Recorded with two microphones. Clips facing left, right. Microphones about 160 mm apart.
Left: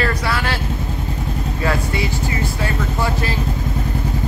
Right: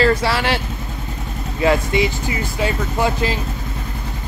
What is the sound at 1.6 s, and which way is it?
Speech, 20° right (ahead or behind).